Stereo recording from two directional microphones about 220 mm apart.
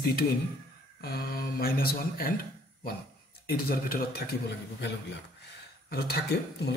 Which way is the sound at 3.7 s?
45° left (ahead or behind).